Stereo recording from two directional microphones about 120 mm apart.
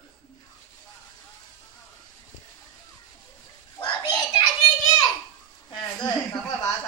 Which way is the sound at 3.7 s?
40° left (ahead or behind).